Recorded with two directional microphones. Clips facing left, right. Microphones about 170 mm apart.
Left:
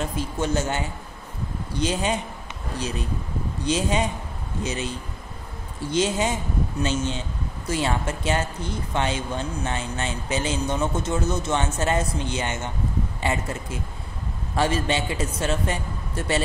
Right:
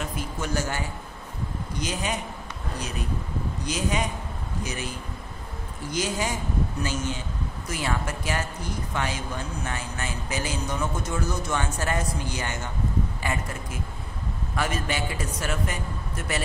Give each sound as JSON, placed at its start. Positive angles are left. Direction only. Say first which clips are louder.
{"t": 0.0, "sound": "speech", "louder": "left 5 dB", "side_deg": 30}
{"t": 3.6, "sound": "speech", "louder": "left 5 dB", "side_deg": 25}